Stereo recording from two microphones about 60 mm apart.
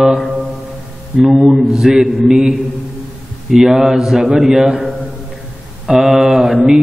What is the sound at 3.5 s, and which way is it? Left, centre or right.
Speech, centre.